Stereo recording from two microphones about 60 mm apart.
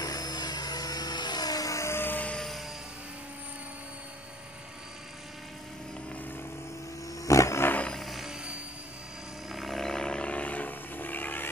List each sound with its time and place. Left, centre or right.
0.0 s a sound: left
1.9 s music: left
7.2 s roaring cats: left
8.0 s music: centre
9.5 s roar: centre; by 11.4 s left